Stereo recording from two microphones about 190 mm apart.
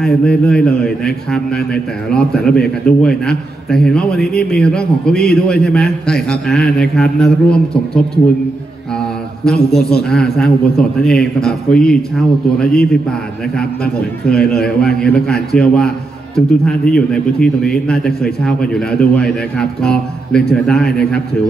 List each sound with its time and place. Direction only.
0.0 s a man's voice: 5° left (ahead or behind)
9.8 s a man's voice: 60° left (ahead or behind)
10.0 s a man's voice: centre (ahead or behind)
14.2 s a man's voice: 5° left (ahead or behind)